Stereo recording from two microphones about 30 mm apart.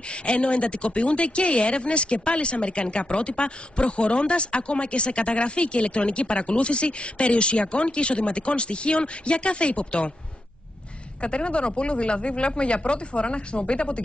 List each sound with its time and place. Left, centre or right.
0.4 s speech: left
11.2 s speech: left